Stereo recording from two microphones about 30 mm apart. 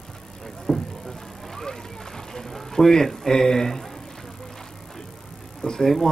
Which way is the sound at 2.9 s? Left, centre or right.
Centre.